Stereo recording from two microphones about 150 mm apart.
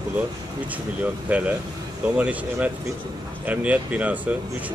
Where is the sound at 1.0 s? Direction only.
10° right (ahead or behind).